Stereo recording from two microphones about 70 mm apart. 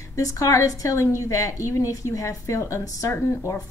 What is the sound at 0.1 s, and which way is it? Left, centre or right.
A woman's voice, left.